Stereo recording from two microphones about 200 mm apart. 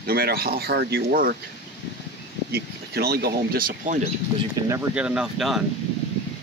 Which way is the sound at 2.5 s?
50° right (ahead or behind).